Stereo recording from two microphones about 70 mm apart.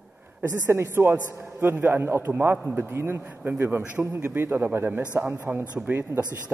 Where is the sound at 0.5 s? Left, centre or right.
Right.